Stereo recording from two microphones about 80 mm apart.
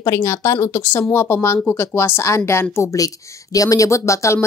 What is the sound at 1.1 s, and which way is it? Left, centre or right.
Speech, left.